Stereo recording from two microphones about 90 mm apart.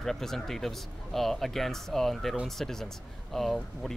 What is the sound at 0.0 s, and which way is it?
Speech, 5° left (ahead or behind).